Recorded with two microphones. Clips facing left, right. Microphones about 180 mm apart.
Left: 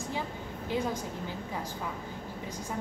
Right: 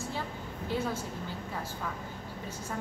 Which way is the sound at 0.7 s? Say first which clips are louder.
Left 1 dB; 15° left (ahead or behind).